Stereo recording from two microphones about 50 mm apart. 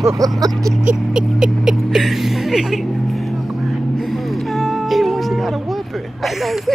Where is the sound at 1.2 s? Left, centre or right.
Centre.